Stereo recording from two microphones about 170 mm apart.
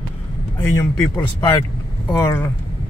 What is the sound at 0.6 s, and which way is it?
Speech, 15° left (ahead or behind).